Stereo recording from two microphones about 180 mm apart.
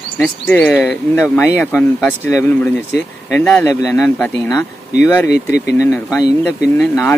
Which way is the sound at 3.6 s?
15° left (ahead or behind).